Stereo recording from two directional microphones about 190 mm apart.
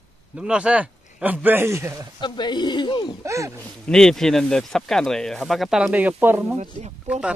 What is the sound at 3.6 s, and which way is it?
Speech, 5° left (ahead or behind).